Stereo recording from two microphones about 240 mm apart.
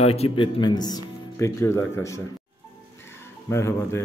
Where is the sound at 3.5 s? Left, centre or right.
Centre.